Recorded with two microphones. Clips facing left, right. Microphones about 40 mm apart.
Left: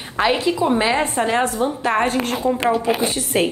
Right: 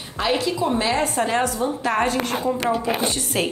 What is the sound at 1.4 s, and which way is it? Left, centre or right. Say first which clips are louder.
Speech: left 3 dB; left.